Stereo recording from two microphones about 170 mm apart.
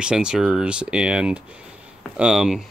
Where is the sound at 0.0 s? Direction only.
5° right (ahead or behind).